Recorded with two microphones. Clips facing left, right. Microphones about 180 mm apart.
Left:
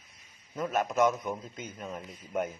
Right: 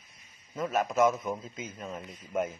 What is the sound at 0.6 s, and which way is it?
A man's voice, centre (ahead or behind).